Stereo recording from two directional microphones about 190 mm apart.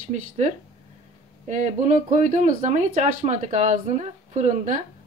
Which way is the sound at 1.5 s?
40° right (ahead or behind).